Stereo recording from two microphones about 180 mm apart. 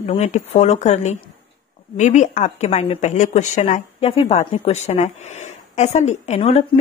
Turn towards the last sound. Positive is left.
turn(degrees=35)  # may be behind; listen again after turning